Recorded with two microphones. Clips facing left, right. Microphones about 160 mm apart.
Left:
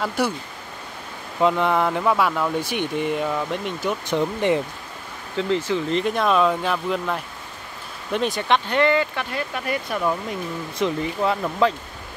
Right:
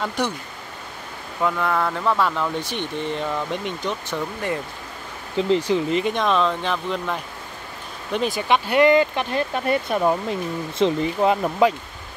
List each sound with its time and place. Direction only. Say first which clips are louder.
0.0 s speech: left 1 dB; 5° left (ahead or behind)
1.4 s speech: left 3 dB; 20° left (ahead or behind); by 3.9 s centre (ahead or behind)
4.1 s speech: left 9 dB; 20° left (ahead or behind)
5.3 s speech: right 3 dB; 15° right (ahead or behind)
5.9 s speech: even; 5° right (ahead or behind); by 10.1 s 30° right (ahead or behind)
10.8 s speech: right 3 dB; 20° right (ahead or behind)